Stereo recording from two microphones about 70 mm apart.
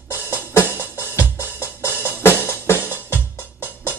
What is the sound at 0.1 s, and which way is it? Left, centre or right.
Music, right.